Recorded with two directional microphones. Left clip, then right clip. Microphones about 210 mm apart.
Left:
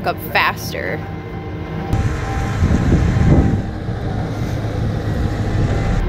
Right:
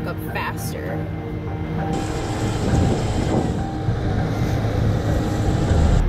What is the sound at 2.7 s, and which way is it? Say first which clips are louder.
Vehicle: left 3 dB; 25° left (ahead or behind).